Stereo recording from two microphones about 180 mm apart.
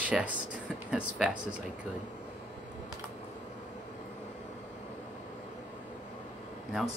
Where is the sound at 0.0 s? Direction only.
5° right (ahead or behind).